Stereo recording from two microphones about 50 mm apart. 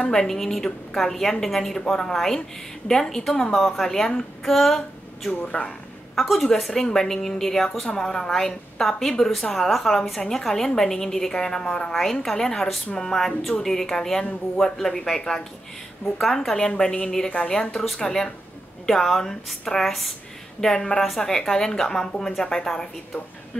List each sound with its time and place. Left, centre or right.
0.0 s a woman's voice: centre
5.4 s speech: centre
6.1 s a woman's voice: centre